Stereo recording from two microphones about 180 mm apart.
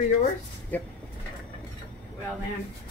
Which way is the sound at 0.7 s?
10° left (ahead or behind).